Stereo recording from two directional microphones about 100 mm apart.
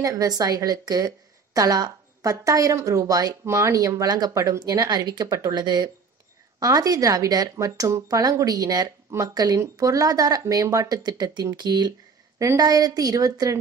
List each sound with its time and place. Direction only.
0.0 s a woman's voice: 35° right (ahead or behind)